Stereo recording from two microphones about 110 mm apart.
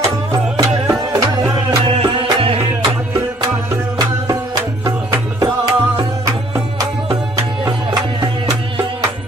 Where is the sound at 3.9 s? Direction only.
35° right (ahead or behind).